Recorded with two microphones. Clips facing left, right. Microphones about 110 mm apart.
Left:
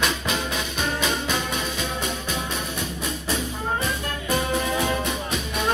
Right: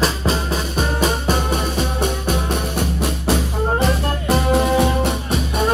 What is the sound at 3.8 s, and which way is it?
Music, 70° right (ahead or behind).